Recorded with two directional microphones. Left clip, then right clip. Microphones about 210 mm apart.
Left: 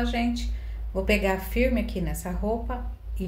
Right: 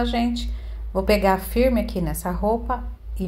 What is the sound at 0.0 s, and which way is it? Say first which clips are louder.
A woman's voice: right 4 dB; 30° right (ahead or behind).